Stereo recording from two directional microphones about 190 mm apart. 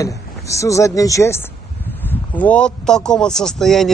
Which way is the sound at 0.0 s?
15° left (ahead or behind).